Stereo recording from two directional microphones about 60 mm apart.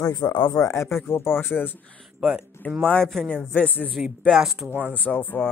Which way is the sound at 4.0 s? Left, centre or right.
Centre.